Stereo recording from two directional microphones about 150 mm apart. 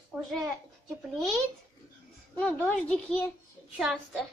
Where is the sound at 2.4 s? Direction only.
10° left (ahead or behind).